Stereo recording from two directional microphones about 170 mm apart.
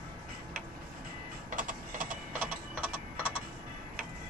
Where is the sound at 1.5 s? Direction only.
50° right (ahead or behind).